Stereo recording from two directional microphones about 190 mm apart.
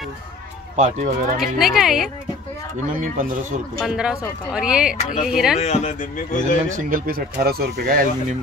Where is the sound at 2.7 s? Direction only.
45° right (ahead or behind).